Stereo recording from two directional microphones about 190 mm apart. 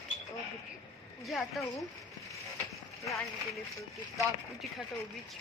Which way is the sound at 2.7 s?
Centre (ahead or behind).